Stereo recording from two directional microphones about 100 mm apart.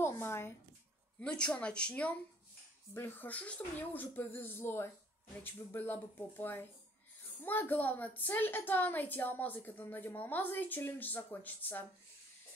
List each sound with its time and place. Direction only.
0.0 s a woman's voice: 25° left (ahead or behind)
1.2 s speech: 10° left (ahead or behind)
2.9 s a woman's voice: 20° left (ahead or behind)